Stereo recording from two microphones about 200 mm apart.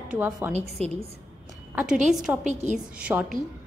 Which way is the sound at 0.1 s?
10° right (ahead or behind).